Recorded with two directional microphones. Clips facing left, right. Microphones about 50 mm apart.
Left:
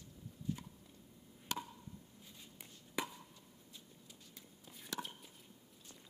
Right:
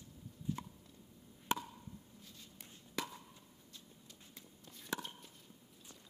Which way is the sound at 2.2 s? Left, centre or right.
Centre.